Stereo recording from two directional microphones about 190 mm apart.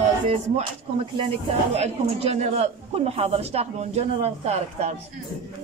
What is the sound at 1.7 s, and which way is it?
A man's voice, 35° right (ahead or behind).